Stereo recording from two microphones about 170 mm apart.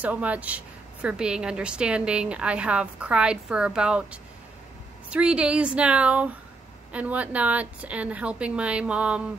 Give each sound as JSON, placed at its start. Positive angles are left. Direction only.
{"t": 0.0, "sound": "a woman's voice", "side_deg": -10}